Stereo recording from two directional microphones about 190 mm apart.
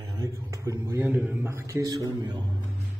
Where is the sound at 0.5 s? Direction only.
15° right (ahead or behind).